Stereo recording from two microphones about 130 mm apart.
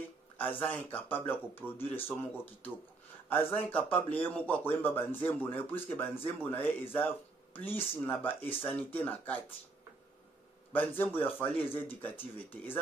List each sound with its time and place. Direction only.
0.7 s speech: 15° left (ahead or behind)
10.7 s speech: 15° left (ahead or behind)